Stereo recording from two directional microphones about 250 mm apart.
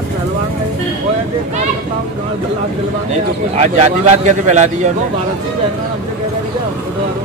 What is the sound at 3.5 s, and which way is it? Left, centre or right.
A man's voice, right.